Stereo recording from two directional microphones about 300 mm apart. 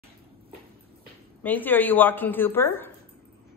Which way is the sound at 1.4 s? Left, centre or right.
Centre.